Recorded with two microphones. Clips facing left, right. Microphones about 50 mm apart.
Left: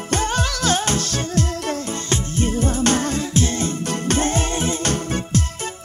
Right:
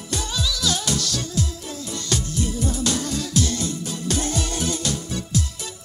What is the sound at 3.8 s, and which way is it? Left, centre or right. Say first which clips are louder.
Music: left 8 dB; left.